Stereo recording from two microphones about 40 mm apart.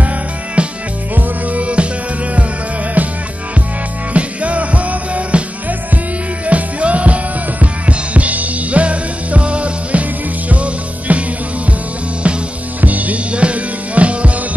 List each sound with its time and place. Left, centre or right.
0.6 s music: right
4.1 s music: right
12.8 s music: right